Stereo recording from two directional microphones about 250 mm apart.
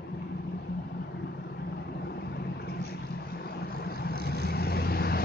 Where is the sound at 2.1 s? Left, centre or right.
Left.